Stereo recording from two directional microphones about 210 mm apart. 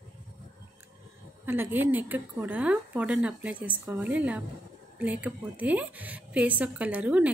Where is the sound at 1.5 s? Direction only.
10° right (ahead or behind).